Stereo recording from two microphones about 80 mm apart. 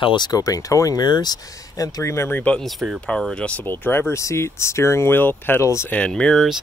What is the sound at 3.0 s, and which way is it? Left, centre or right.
Speech, centre.